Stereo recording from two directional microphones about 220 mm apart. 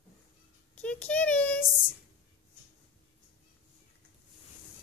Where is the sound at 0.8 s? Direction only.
5° left (ahead or behind).